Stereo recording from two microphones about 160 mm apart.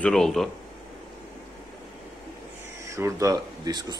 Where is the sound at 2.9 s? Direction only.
20° right (ahead or behind).